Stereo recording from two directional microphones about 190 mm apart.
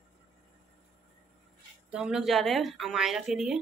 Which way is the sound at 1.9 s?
5° right (ahead or behind).